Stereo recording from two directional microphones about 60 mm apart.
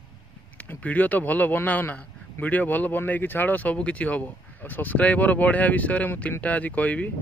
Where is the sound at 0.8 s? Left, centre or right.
Left.